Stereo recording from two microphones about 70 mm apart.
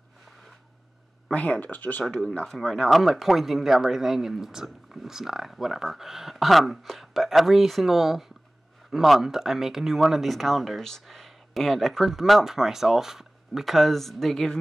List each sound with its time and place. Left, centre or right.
1.3 s speech: centre
2.0 s speech: centre